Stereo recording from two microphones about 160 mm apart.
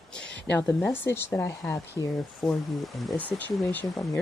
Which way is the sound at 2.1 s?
5° left (ahead or behind).